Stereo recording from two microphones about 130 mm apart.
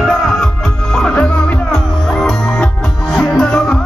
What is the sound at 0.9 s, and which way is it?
Music, 5° left (ahead or behind).